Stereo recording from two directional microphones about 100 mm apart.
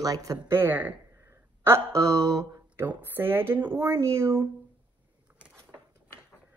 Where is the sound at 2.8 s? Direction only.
20° right (ahead or behind).